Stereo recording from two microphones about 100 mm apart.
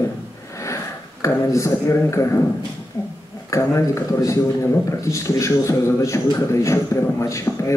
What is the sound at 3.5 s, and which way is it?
A man's voice, 30° left (ahead or behind).